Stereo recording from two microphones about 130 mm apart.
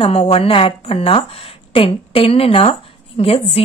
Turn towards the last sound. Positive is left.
turn(degrees=50)  # may be behind; listen again after turning